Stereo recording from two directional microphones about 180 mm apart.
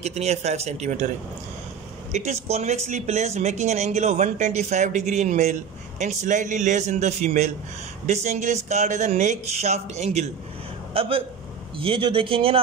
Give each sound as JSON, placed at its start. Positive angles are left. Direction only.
{"t": 0.0, "sound": "speech", "side_deg": -35}
{"t": 2.1, "sound": "a man's voice", "side_deg": -35}